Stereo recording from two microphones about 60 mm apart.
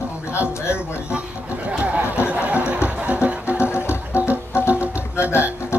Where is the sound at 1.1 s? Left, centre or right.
Right.